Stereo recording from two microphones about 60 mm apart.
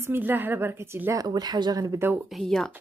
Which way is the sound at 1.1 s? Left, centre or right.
Right.